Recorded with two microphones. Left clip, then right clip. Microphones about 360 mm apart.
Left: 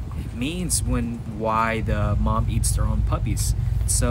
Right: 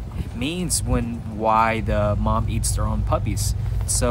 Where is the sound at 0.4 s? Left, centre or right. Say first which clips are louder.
Right 2 dB; centre.